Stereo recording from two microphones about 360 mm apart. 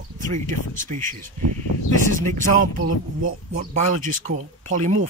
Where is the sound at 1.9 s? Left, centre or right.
Right.